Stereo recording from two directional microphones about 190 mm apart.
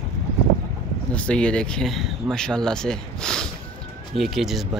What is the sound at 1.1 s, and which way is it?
Speech, 5° left (ahead or behind).